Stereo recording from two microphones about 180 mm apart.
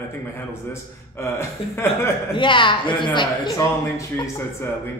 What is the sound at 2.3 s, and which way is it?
A man's voice, 25° left (ahead or behind).